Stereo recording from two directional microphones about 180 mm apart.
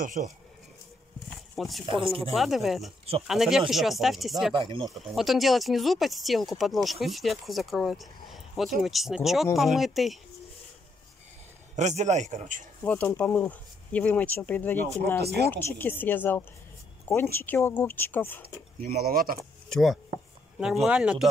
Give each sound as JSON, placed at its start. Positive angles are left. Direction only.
{"t": 0.0, "sound": "speech", "side_deg": -45}
{"t": 1.5, "sound": "speech", "side_deg": 0}
{"t": 1.9, "sound": "speech", "side_deg": -30}
{"t": 2.3, "sound": "speech", "side_deg": 0}
{"t": 4.6, "sound": "speech", "side_deg": -30}
{"t": 5.1, "sound": "speech", "side_deg": 0}
{"t": 11.7, "sound": "a man's voice", "side_deg": -40}
{"t": 12.8, "sound": "speech", "side_deg": 10}
{"t": 15.1, "sound": "speech", "side_deg": -65}
{"t": 15.5, "sound": "speech", "side_deg": 10}
{"t": 18.8, "sound": "speech", "side_deg": -55}
{"t": 19.7, "sound": "speech", "side_deg": 0}